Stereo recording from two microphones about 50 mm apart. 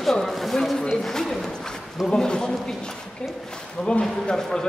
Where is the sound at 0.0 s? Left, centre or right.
Centre.